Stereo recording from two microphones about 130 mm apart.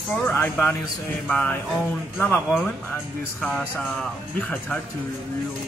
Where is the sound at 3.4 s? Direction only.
5° right (ahead or behind).